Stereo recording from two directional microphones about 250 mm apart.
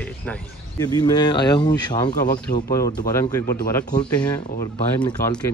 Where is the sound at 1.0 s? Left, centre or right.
Centre.